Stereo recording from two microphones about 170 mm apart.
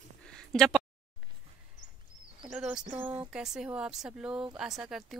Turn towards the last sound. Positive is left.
turn(degrees=0)  # may be behind; listen again after turning